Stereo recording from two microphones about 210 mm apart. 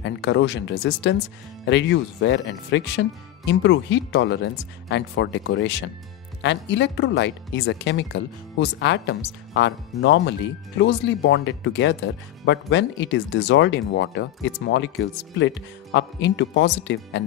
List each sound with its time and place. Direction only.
0.0 s speech: 60° left (ahead or behind)